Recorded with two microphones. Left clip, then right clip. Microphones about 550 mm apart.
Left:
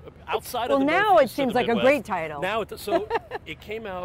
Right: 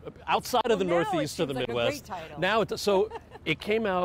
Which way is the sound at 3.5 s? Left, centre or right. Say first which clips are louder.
Right 7 dB; right.